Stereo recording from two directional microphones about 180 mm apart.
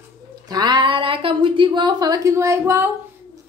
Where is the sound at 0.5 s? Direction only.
25° right (ahead or behind).